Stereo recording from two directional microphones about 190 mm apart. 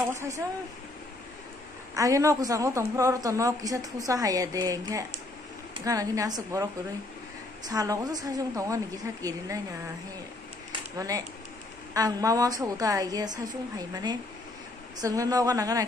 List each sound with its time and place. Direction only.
0.1 s a woman's voice: 15° right (ahead or behind)
2.0 s a woman's voice: 15° right (ahead or behind)
10.7 s a sound: 20° right (ahead or behind)
11.9 s a woman's voice: 20° right (ahead or behind)